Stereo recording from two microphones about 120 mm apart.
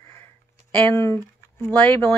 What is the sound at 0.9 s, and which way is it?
Speech, 25° left (ahead or behind).